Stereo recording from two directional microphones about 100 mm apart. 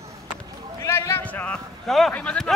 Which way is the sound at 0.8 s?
30° left (ahead or behind).